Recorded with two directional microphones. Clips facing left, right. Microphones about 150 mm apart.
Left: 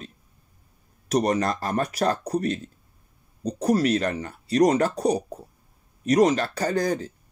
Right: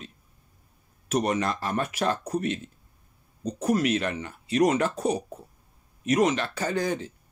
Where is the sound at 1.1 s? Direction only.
40° left (ahead or behind).